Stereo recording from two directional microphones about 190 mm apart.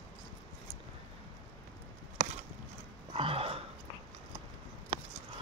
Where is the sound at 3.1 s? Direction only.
30° right (ahead or behind).